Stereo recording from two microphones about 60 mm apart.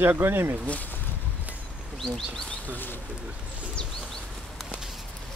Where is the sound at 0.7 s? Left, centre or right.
Left.